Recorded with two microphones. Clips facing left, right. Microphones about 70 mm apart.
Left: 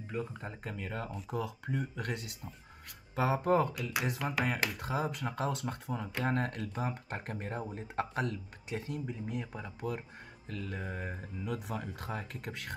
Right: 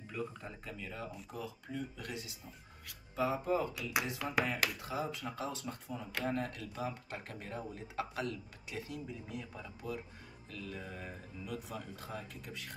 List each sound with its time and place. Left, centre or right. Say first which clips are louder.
0.1 s speech: left 3 dB; left
1.3 s speech: left 9 dB; left